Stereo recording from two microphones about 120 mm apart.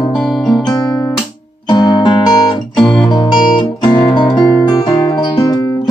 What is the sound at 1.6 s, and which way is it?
Music, 35° left (ahead or behind).